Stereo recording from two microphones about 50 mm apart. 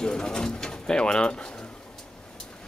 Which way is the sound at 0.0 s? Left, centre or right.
Centre.